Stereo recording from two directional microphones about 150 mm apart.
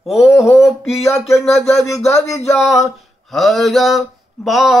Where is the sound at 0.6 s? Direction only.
Centre (ahead or behind).